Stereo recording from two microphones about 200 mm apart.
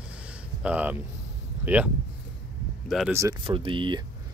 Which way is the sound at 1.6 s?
10° right (ahead or behind).